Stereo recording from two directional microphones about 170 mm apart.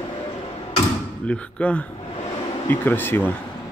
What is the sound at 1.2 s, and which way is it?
Speech, 5° left (ahead or behind).